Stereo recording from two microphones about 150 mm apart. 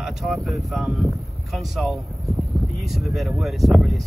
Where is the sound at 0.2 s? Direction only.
Centre (ahead or behind).